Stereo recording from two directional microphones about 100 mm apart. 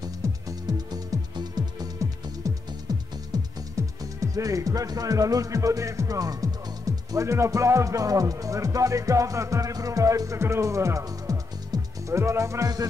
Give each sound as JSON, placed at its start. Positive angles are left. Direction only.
{"t": 0.0, "sound": "music", "side_deg": -40}
{"t": 3.7, "sound": "speech", "side_deg": -35}